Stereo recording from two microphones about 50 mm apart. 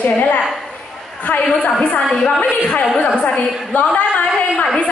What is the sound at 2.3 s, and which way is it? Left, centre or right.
A woman's voice, left.